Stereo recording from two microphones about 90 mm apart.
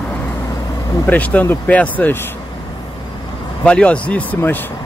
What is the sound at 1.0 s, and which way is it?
Speech, 15° left (ahead or behind).